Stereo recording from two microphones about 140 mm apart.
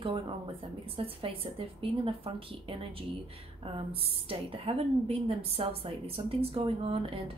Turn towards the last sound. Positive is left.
turn(degrees=-40)  # may be behind; listen again after turning